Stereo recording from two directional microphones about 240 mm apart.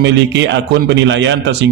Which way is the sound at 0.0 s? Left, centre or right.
Right.